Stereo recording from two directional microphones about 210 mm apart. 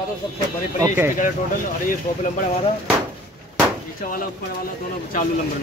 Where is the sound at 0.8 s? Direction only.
10° right (ahead or behind).